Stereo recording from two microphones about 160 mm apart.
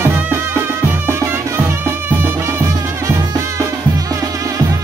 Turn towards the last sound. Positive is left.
turn(degrees=-15)  # may be behind; listen again after turning